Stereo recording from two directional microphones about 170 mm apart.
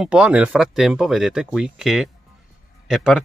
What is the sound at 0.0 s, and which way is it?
Speech, 5° right (ahead or behind).